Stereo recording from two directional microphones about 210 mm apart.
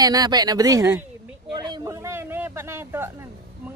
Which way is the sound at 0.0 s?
20° right (ahead or behind).